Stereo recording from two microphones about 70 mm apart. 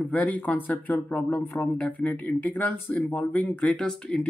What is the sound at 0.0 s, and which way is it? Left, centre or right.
Speech, left.